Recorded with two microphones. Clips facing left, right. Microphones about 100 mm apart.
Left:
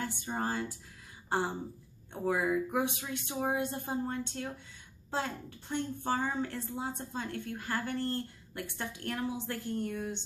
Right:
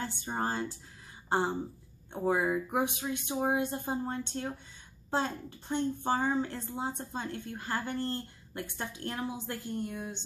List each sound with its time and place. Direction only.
0.0 s a woman's voice: 25° right (ahead or behind)
2.1 s a woman's voice: 25° right (ahead or behind)